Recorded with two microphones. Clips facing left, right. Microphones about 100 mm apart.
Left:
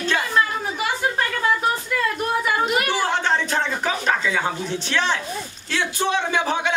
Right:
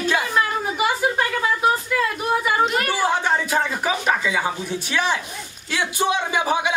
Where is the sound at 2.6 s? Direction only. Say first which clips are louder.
Right 1 dB; 5° left (ahead or behind).